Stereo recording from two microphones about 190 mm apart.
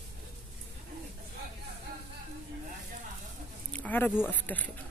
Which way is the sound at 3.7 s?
10° left (ahead or behind).